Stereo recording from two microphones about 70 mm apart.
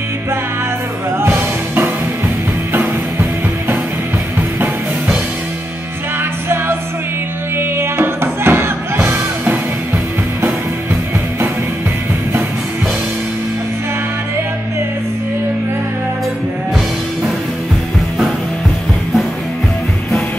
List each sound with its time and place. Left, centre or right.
2.7 s music: right
7.5 s music: right